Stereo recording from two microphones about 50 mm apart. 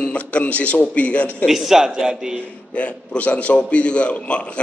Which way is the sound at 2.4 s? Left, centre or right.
Left.